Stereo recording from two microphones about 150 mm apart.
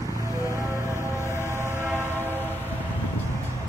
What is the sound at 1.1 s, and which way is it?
Train, 15° left (ahead or behind).